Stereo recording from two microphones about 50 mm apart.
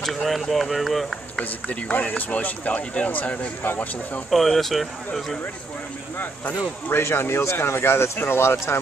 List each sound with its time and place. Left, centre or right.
0.0 s speech: centre
1.4 s speech: left
4.3 s speech: centre
6.9 s speech: left